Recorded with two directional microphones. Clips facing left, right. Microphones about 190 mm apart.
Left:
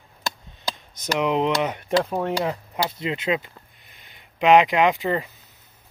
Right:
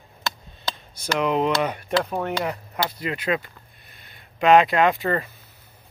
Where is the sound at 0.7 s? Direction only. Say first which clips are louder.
Even; 15° left (ahead or behind).